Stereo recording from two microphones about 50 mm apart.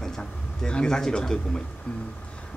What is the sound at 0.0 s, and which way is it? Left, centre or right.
Speech, centre.